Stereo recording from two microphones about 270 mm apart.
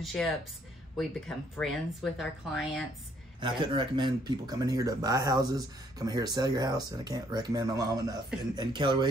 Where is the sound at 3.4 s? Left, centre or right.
Centre.